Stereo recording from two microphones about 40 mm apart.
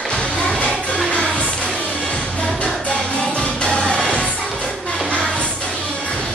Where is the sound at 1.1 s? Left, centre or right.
Left.